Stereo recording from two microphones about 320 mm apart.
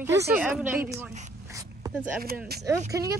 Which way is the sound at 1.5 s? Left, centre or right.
Centre.